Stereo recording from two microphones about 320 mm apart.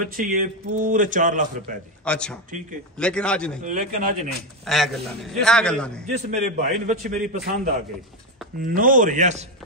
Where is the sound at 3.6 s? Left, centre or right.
Right.